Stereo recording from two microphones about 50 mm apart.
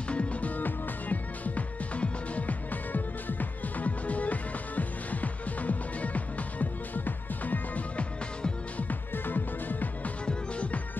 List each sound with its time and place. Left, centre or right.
0.1 s music: left
10.2 s music: left